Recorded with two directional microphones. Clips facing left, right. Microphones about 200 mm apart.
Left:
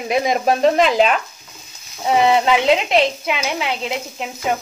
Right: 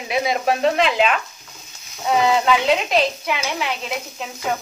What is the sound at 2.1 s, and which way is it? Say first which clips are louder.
Speech: left 2 dB; 25° left (ahead or behind).